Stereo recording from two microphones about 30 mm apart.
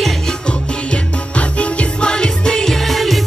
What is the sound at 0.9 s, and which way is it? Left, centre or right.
Music, left.